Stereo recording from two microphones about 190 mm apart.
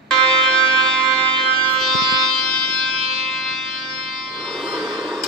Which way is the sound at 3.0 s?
35° right (ahead or behind).